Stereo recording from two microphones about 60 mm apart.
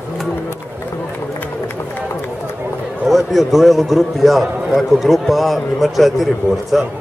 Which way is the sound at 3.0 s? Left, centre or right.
Centre.